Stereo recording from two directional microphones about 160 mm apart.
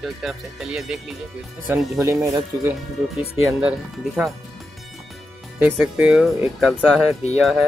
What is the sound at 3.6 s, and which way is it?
Speech, 10° right (ahead or behind).